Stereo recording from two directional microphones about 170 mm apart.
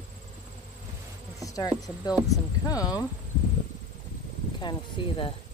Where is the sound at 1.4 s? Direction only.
20° left (ahead or behind).